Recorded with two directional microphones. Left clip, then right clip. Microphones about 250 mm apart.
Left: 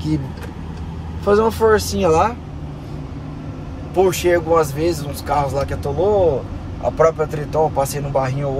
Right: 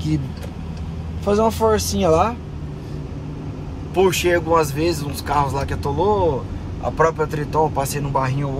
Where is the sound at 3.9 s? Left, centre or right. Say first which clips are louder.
Left 1 dB; centre.